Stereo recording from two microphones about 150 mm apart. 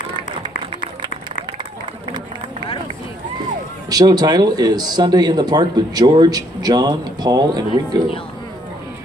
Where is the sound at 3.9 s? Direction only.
25° right (ahead or behind).